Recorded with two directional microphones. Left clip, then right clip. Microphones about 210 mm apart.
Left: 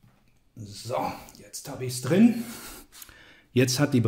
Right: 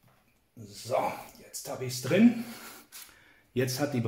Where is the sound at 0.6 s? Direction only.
40° left (ahead or behind).